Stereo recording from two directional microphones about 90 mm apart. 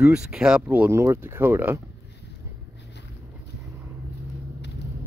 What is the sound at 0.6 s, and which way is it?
Speech, 20° right (ahead or behind).